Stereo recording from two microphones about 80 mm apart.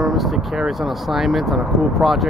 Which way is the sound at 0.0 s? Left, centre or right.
Centre.